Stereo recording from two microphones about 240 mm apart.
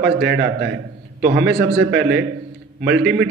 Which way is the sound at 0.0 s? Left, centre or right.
Right.